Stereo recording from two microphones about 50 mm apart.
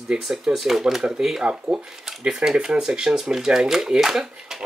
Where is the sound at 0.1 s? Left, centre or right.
Centre.